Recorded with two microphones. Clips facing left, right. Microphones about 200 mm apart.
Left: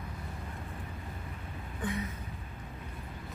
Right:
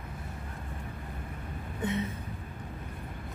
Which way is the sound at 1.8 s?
25° right (ahead or behind).